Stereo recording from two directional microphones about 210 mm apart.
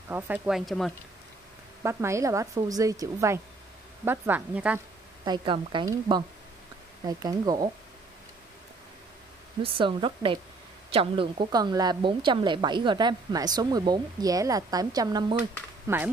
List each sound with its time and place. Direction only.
0.1 s speech: 5° right (ahead or behind)
1.8 s a woman's voice: 15° right (ahead or behind)
5.2 s a woman's voice: 20° right (ahead or behind)
9.6 s a woman's voice: 25° right (ahead or behind)